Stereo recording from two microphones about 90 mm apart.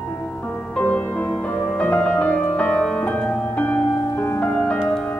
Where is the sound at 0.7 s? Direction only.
15° left (ahead or behind).